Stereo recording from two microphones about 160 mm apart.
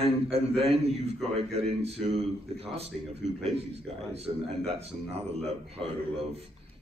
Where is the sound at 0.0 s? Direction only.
40° right (ahead or behind).